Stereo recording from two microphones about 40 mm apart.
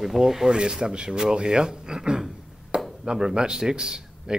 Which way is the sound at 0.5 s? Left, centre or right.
Right.